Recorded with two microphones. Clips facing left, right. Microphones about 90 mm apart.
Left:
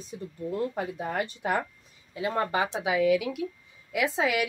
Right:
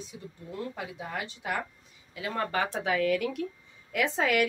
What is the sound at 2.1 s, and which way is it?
Speech, 25° left (ahead or behind).